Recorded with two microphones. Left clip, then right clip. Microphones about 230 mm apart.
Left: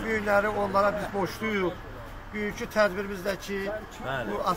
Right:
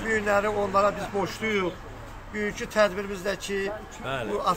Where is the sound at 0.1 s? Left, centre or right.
Centre.